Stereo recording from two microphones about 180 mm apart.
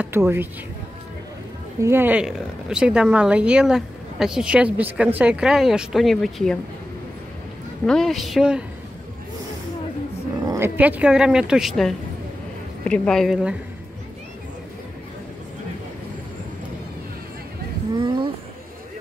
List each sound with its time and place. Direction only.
0.0 s speech: 15° right (ahead or behind)
1.8 s speech: 15° right (ahead or behind); by 6.6 s centre (ahead or behind)
7.8 s speech: centre (ahead or behind)
10.4 s speech: 15° right (ahead or behind)
17.9 s a sound: 25° right (ahead or behind)